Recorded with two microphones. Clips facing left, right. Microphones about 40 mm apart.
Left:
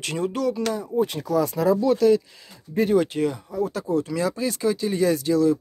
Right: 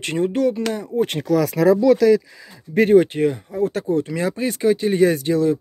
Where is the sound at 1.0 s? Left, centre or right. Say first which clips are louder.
Right 5 dB; right.